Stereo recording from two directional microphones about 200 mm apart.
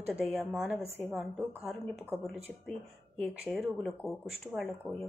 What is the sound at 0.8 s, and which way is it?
Speech, 10° left (ahead or behind).